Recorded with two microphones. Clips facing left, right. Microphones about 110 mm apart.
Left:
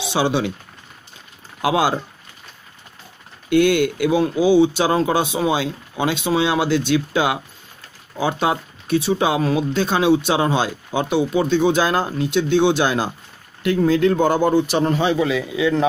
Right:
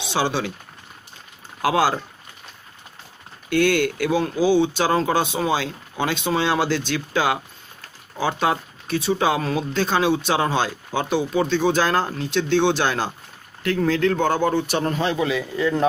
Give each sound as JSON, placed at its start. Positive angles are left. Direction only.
{"t": 0.1, "sound": "speech", "side_deg": 15}
{"t": 1.6, "sound": "speech", "side_deg": 15}
{"t": 3.4, "sound": "a man's voice", "side_deg": 10}